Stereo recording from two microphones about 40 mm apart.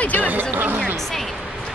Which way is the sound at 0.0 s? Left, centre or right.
Left.